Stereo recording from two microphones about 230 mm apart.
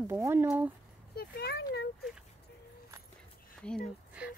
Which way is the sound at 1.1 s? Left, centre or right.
Left.